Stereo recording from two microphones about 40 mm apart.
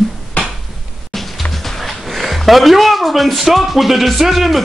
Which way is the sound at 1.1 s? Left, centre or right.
Centre.